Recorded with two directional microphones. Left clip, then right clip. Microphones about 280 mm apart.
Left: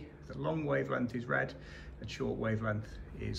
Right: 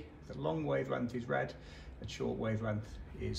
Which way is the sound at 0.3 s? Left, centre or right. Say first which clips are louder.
Left 1 dB; centre.